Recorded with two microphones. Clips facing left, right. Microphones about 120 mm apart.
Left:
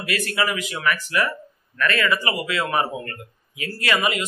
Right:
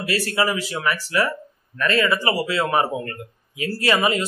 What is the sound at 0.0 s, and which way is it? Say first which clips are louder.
Speech: right 2 dB; 30° right (ahead or behind).